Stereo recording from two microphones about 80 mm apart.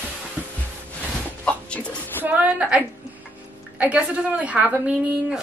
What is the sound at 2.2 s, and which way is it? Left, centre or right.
A woman's voice, centre.